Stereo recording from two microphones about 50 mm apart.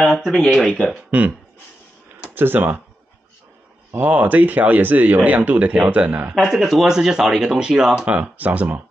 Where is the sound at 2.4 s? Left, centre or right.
Right.